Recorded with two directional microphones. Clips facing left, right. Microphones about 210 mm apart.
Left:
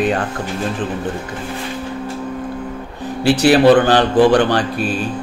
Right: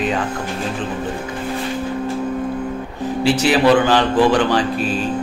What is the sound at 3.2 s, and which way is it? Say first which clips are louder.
Speech: left 4 dB; 60° left (ahead or behind).